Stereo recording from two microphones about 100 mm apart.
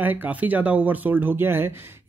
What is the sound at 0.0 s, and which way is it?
Speech, 15° right (ahead or behind).